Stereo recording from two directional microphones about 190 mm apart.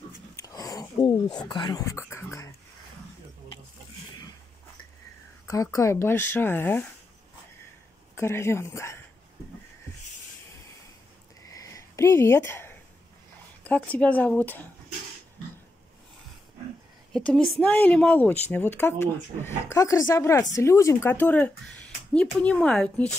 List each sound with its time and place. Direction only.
0.4 s a sound: 20° left (ahead or behind)
1.5 s speech: 20° left (ahead or behind)
5.5 s speech: 15° left (ahead or behind)
8.2 s speech: 15° left (ahead or behind)
11.5 s a sound: 15° left (ahead or behind)
13.7 s speech: 5° left (ahead or behind)
17.1 s speech: 5° left (ahead or behind)